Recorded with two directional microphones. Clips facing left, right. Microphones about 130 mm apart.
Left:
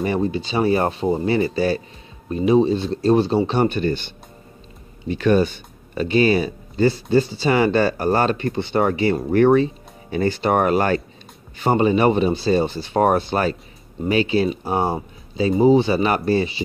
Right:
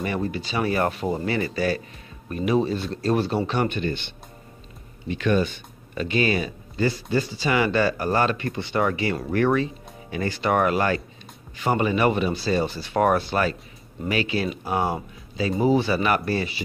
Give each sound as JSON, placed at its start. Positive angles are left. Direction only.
{"t": 0.0, "sound": "speech", "side_deg": 25}